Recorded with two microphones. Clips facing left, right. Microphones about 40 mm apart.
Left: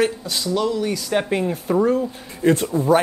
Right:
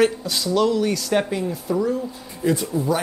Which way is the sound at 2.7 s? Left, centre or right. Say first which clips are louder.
Left 2 dB; left.